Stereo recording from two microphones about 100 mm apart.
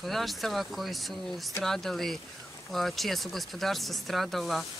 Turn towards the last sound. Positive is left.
turn(degrees=0)  # may be behind; listen again after turning